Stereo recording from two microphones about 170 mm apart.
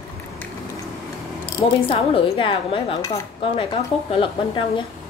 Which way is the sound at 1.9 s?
30° left (ahead or behind).